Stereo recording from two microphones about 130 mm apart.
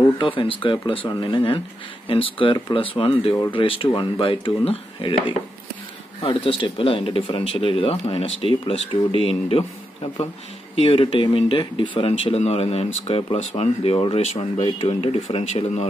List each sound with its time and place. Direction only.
0.4 s speech: 40° left (ahead or behind)
6.2 s speech: 45° left (ahead or behind)
10.8 s speech: 45° left (ahead or behind)
12.1 s speech: 55° left (ahead or behind)